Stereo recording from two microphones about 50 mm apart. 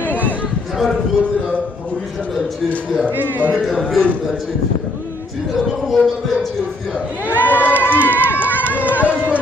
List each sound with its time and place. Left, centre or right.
0.0 s a sound: left
3.3 s speech: left
3.6 s speech: centre
5.7 s speech: centre
7.3 s speech: left
7.8 s run: left
8.6 s run: right